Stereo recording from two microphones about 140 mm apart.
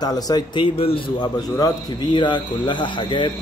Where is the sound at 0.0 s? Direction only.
30° left (ahead or behind).